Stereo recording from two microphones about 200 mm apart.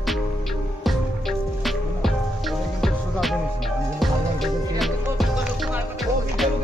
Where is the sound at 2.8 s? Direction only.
Centre (ahead or behind).